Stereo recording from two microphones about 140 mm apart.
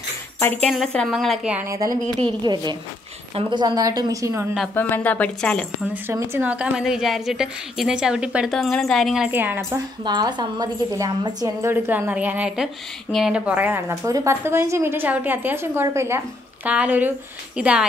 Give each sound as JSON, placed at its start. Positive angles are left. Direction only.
{"t": 0.4, "sound": "speech", "side_deg": 15}
{"t": 0.7, "sound": "a woman's voice", "side_deg": 5}
{"t": 2.4, "sound": "a woman's voice", "side_deg": -30}
{"t": 4.7, "sound": "speech", "side_deg": 15}
{"t": 6.0, "sound": "a woman's voice", "side_deg": -15}
{"t": 9.3, "sound": "a woman's voice", "side_deg": -15}
{"t": 10.0, "sound": "a woman's voice", "side_deg": -30}